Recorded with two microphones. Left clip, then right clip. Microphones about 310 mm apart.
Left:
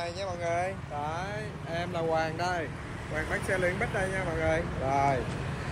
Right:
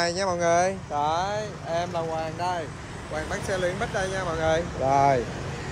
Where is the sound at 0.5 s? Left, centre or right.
Right.